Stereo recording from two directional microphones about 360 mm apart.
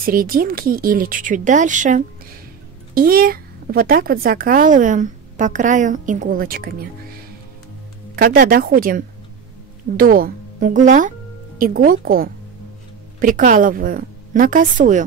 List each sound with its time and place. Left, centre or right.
0.0 s a woman's voice: right
8.2 s a woman's voice: right